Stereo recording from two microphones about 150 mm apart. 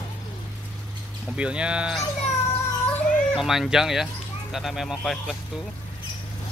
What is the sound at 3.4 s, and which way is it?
Speech, centre (ahead or behind).